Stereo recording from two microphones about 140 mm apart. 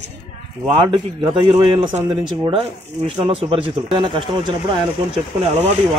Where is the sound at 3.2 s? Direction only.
40° right (ahead or behind).